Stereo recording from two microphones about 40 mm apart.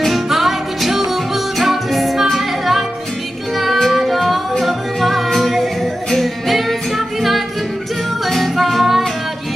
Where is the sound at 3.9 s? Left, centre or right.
Centre.